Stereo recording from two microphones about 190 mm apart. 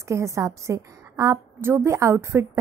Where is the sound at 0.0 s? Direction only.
15° right (ahead or behind).